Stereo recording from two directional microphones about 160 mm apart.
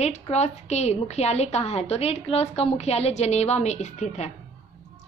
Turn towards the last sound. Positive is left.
turn(degrees=45)  # may be behind; listen again after turning